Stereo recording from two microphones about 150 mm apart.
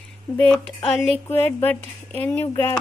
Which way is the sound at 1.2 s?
15° left (ahead or behind).